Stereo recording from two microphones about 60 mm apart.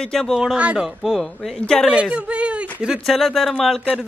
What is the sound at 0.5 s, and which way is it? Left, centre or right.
Speech, centre.